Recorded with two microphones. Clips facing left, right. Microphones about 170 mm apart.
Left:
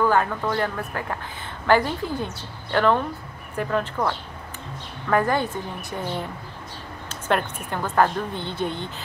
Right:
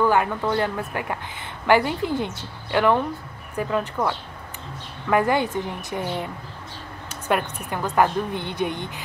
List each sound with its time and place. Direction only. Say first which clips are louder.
0.1 s a woman's voice: right 1 dB; 15° right (ahead or behind)
5.1 s a woman's voice: right 1 dB; 15° right (ahead or behind)
7.1 s a woman's voice: even; 10° right (ahead or behind)